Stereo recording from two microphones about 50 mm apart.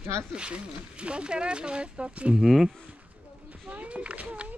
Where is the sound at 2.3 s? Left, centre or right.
Centre.